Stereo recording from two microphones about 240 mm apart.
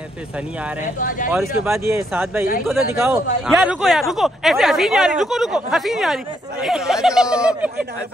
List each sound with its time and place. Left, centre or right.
0.9 s speech: left
1.3 s speech: centre